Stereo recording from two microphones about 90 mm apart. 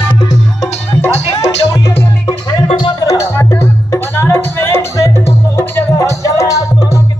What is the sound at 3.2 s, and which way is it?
Music, 30° left (ahead or behind).